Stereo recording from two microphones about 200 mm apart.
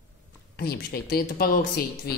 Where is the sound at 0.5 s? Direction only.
50° left (ahead or behind).